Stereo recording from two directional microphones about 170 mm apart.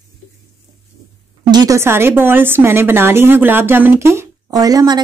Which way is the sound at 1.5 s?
20° right (ahead or behind).